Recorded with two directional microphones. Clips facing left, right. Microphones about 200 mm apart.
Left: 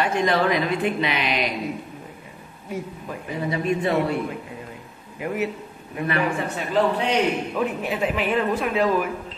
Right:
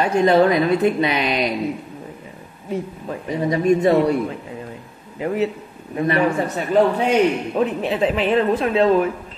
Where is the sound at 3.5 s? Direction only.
40° right (ahead or behind).